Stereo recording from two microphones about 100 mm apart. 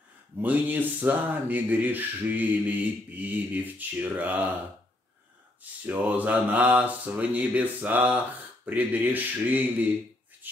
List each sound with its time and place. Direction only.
0.4 s speech: 15° right (ahead or behind)
5.9 s speech: 15° right (ahead or behind)
10.4 s a sound: 20° right (ahead or behind)